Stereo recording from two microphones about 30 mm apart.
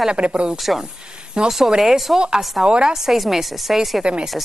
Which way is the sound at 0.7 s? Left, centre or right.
Centre.